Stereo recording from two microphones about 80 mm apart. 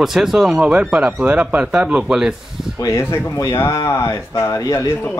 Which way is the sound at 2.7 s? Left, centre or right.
Left.